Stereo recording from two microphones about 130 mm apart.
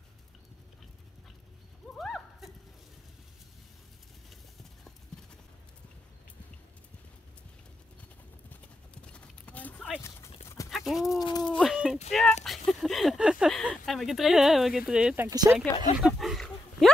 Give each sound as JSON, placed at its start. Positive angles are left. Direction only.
{"t": 2.0, "sound": "horse", "side_deg": 0}
{"t": 8.5, "sound": "clip-clop", "side_deg": 10}
{"t": 10.7, "sound": "dog", "side_deg": 0}
{"t": 11.1, "sound": "a sound", "side_deg": 30}
{"t": 11.4, "sound": "a sound", "side_deg": 5}
{"t": 12.1, "sound": "clip-clop", "side_deg": 0}
{"t": 12.4, "sound": "a sound", "side_deg": 0}
{"t": 13.7, "sound": "speech", "side_deg": 0}
{"t": 15.2, "sound": "speech", "side_deg": -25}
{"t": 16.0, "sound": "dog", "side_deg": -5}